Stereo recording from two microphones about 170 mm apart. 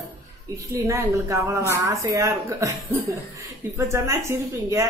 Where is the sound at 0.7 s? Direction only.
15° right (ahead or behind).